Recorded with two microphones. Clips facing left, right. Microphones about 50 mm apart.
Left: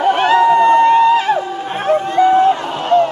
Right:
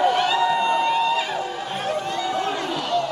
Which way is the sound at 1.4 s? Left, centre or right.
Left.